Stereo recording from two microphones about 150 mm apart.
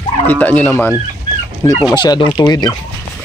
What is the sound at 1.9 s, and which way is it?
Speech, 30° left (ahead or behind).